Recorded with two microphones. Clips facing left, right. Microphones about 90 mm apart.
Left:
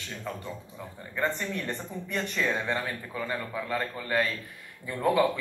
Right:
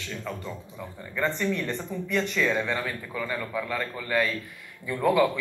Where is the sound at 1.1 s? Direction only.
20° left (ahead or behind).